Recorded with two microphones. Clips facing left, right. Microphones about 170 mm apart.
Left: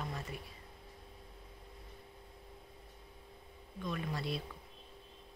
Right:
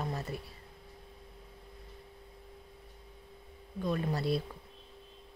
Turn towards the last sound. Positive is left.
turn(degrees=-40)  # may be behind; listen again after turning